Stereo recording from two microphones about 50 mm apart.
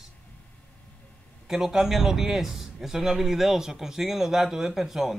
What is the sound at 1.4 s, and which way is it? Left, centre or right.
A man's voice, centre.